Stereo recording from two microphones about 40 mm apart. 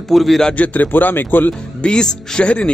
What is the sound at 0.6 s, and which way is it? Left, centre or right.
Speech, left.